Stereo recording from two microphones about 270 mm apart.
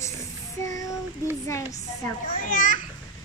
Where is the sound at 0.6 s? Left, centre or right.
Centre.